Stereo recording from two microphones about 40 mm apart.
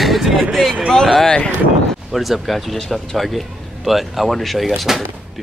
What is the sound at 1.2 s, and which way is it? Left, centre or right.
Speech, left.